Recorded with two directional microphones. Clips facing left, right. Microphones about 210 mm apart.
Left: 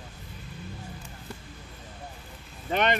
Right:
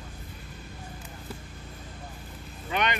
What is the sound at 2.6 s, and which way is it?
Vehicle, 40° left (ahead or behind).